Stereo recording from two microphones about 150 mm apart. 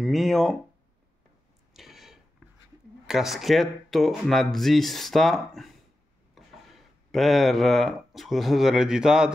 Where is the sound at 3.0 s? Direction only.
Centre (ahead or behind).